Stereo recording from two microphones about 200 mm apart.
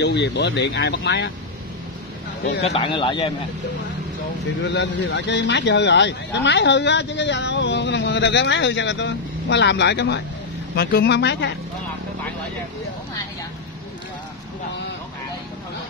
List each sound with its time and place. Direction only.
0.0 s speech: 60° left (ahead or behind)
2.6 s speech: 30° left (ahead or behind)
4.6 s speech: 60° left (ahead or behind)